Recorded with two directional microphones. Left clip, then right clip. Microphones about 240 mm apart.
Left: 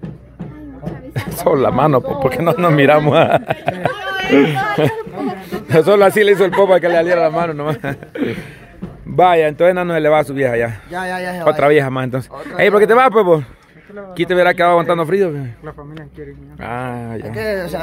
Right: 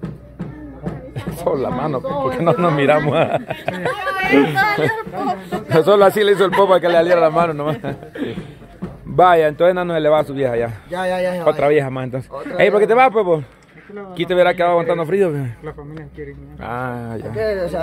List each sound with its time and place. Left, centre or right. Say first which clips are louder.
1.1 s a man's voice: left 6 dB; left
3.7 s speech: left 1 dB; right
4.3 s a man's voice: left 3 dB; left
5.7 s a man's voice: left 1 dB; centre
9.1 s a man's voice: left 1 dB; centre; by 13.5 s left
14.1 s a man's voice: left 2 dB; centre
15.1 s a man's voice: left 1 dB; centre
16.6 s a man's voice: left 1 dB; centre
17.4 s speech: right 1 dB; left